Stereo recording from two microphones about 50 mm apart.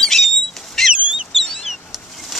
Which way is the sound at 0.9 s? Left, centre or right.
Right.